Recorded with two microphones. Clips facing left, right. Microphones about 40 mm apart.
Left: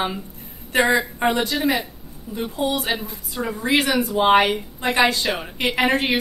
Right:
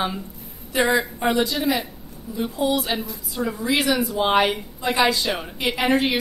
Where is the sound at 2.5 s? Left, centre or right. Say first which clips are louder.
Even; left.